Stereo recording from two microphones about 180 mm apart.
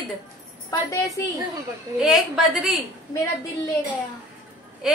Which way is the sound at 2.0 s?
Centre (ahead or behind).